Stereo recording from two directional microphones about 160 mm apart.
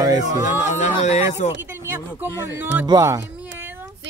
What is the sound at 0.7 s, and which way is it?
Speech, 50° left (ahead or behind).